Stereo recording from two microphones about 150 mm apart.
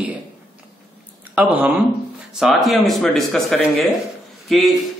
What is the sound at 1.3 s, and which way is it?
A man's voice, 10° right (ahead or behind).